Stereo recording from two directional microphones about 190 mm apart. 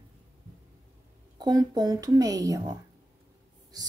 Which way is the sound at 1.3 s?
20° right (ahead or behind).